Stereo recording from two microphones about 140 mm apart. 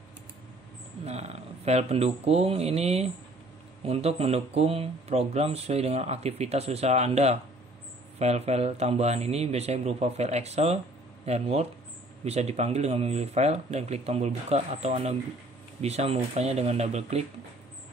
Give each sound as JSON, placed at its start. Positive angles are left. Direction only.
{"t": 1.0, "sound": "speech", "side_deg": -50}